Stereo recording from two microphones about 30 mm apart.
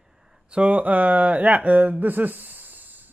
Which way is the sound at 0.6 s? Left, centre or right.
Right.